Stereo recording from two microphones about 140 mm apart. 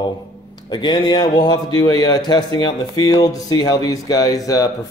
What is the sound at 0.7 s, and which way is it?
Speech, 30° left (ahead or behind).